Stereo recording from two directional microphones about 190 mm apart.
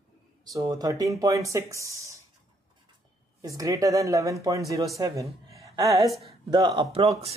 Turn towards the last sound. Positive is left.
turn(degrees=-30)  # may be behind; listen again after turning